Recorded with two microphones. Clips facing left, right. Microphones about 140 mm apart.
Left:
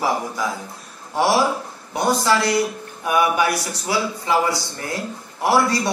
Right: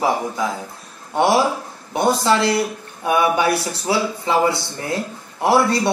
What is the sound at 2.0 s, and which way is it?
Speech, 25° right (ahead or behind).